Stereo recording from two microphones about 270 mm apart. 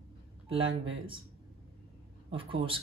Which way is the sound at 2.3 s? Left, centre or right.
Centre.